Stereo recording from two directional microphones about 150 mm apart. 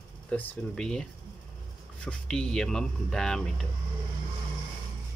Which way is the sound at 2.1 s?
5° left (ahead or behind).